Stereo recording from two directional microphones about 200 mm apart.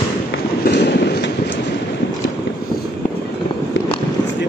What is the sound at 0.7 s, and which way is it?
Train, 55° left (ahead or behind).